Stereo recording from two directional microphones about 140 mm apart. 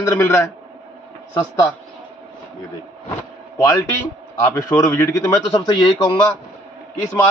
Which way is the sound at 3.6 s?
15° left (ahead or behind).